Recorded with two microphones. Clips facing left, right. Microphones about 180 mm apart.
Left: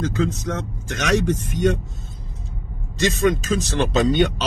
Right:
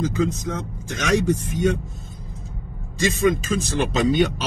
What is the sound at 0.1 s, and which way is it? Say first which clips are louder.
Speech: even; 75° left (ahead or behind).